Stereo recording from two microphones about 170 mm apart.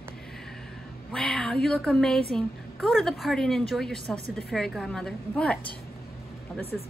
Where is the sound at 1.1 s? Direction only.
5° left (ahead or behind).